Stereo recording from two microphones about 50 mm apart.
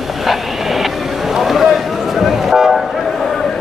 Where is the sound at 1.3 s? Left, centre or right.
Centre.